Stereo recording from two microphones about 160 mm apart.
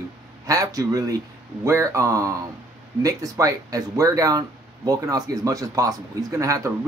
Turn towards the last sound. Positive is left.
turn(degrees=-20)  # may be behind; listen again after turning